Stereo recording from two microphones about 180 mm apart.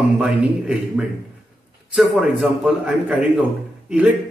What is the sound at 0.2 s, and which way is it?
Speech, 5° right (ahead or behind).